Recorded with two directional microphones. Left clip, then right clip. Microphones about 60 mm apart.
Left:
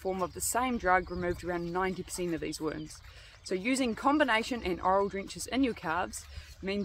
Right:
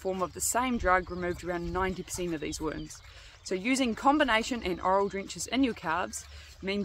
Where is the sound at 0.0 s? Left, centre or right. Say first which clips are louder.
Right 2 dB; right.